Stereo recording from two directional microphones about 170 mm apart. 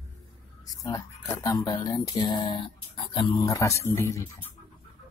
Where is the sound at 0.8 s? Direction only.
20° left (ahead or behind).